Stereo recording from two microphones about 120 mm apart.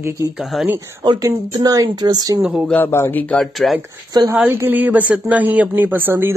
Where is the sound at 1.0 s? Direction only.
35° right (ahead or behind).